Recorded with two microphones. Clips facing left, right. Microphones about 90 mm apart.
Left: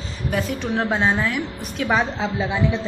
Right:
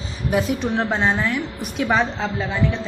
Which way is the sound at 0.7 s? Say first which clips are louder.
Left 2 dB; centre (ahead or behind).